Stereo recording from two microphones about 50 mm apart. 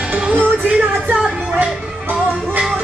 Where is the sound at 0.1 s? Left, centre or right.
Right.